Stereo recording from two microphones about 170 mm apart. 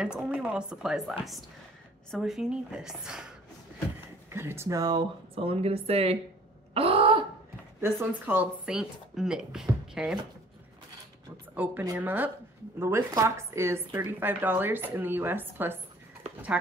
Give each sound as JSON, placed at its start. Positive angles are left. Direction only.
{"t": 0.0, "sound": "speech", "side_deg": -5}
{"t": 4.3, "sound": "speech", "side_deg": -15}
{"t": 5.3, "sound": "speech", "side_deg": -35}
{"t": 6.7, "sound": "throat clearing", "side_deg": -35}
{"t": 7.8, "sound": "speech", "side_deg": -10}
{"t": 11.5, "sound": "speech", "side_deg": -10}